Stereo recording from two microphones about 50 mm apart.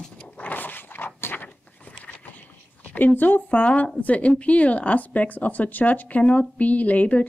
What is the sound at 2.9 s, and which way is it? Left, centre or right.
Speech, left.